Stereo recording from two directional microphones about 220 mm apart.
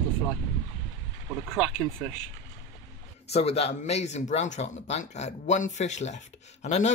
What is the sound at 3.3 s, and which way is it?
Speech, 30° left (ahead or behind).